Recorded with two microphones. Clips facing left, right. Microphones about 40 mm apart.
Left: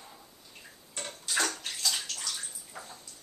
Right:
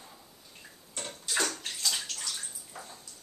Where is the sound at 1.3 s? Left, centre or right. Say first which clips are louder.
Left 1 dB; centre.